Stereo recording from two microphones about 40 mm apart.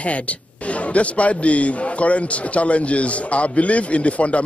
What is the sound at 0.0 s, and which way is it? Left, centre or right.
Speech, left.